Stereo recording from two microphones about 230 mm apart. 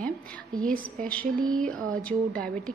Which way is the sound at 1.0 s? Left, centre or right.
Centre.